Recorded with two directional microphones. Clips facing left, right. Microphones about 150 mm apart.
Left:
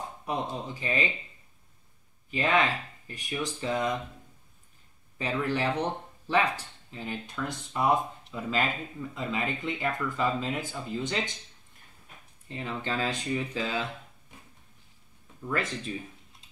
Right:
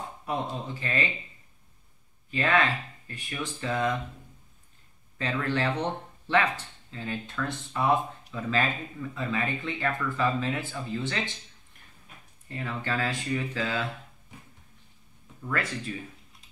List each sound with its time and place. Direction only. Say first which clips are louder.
0.3 s speech: right 1 dB; 15° left (ahead or behind)
2.3 s speech: even; 15° left (ahead or behind)
5.1 s speech: even; 15° left (ahead or behind)
12.4 s speech: right 1 dB; 20° left (ahead or behind)
15.4 s speech: even; 15° left (ahead or behind)